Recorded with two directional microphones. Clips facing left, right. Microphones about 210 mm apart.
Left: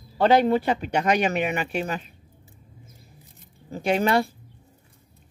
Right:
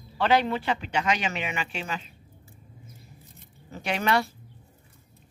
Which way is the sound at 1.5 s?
55° left (ahead or behind).